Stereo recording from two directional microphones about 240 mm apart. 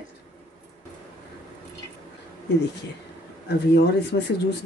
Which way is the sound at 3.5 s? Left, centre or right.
Left.